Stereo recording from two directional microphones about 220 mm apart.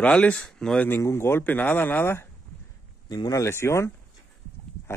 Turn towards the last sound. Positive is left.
turn(degrees=10)  # may be behind; listen again after turning